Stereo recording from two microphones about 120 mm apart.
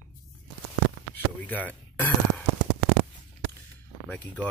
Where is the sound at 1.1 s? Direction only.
15° left (ahead or behind).